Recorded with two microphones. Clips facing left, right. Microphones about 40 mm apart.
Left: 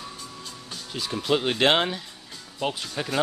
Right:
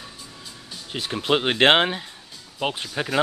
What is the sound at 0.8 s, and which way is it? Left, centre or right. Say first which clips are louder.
Speech: right 2 dB; right.